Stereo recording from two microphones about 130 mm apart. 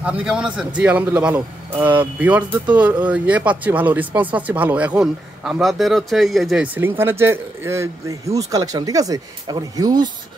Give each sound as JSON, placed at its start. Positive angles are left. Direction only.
{"t": 0.0, "sound": "speech", "side_deg": -10}
{"t": 6.6, "sound": "speech", "side_deg": -15}